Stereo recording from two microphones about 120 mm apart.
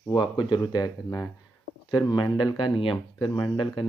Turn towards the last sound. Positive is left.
turn(degrees=45)  # may be behind; listen again after turning